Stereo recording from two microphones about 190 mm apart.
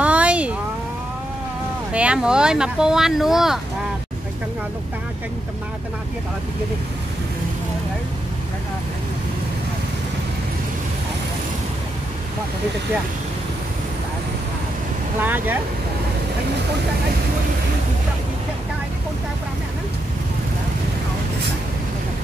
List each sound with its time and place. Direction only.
0.0 s a sound: 5° right (ahead or behind)
1.9 s speech: 5° right (ahead or behind)
15.2 s speech: 10° right (ahead or behind)